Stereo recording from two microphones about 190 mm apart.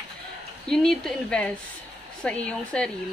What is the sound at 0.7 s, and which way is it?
A woman's voice, 5° left (ahead or behind).